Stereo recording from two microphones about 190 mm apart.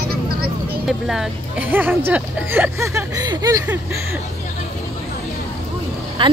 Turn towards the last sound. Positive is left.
turn(degrees=-25)  # may be behind; listen again after turning